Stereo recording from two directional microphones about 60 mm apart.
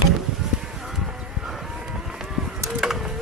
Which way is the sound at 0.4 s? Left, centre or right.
Centre.